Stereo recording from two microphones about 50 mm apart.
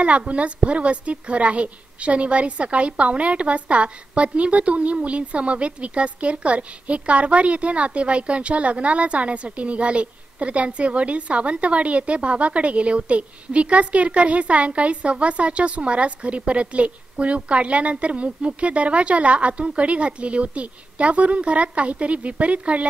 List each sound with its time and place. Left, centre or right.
0.0 s a woman's voice: right